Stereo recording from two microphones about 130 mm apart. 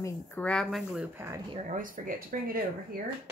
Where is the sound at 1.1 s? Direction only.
20° right (ahead or behind).